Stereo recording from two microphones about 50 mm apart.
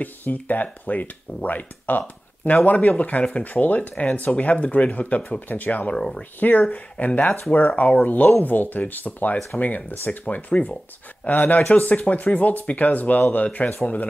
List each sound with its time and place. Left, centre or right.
0.0 s speech: left
5.9 s speech: centre; by 13.7 s left